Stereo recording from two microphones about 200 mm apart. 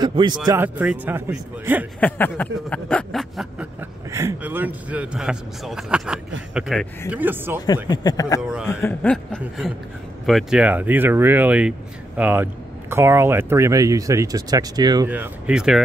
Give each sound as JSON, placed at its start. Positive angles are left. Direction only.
{"t": 0.0, "sound": "speech", "side_deg": -25}
{"t": 0.5, "sound": "speech", "side_deg": -10}
{"t": 2.0, "sound": "speech", "side_deg": 10}
{"t": 4.1, "sound": "speech", "side_deg": -15}
{"t": 7.1, "sound": "speech", "side_deg": -10}
{"t": 7.6, "sound": "speech", "side_deg": 20}
{"t": 8.4, "sound": "a sound", "side_deg": -5}
{"t": 8.6, "sound": "speech", "side_deg": 10}
{"t": 15.0, "sound": "speech", "side_deg": -5}